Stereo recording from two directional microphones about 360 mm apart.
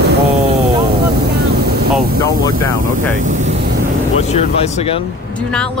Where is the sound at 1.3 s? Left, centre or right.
Right.